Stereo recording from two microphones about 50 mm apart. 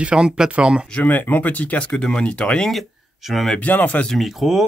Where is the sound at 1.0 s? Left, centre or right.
Left.